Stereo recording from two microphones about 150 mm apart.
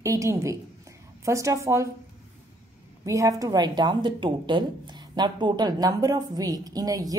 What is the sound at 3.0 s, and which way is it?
A woman's voice, 20° right (ahead or behind).